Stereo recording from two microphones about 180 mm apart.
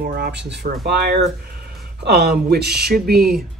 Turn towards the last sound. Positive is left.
turn(degrees=-60)  # may be behind; listen again after turning